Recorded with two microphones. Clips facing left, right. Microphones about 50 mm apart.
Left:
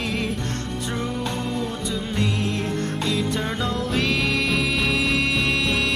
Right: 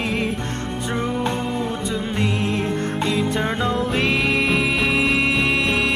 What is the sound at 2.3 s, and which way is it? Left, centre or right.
Music, centre.